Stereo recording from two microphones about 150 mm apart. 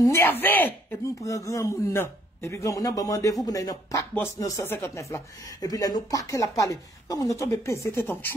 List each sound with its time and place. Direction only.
0.0 s speech: 15° left (ahead or behind)